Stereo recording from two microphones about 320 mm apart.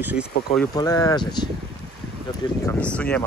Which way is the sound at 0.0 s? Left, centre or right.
Centre.